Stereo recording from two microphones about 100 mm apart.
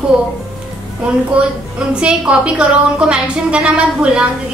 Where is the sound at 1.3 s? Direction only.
10° right (ahead or behind).